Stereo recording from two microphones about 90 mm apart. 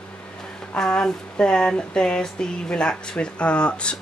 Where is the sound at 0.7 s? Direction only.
10° left (ahead or behind).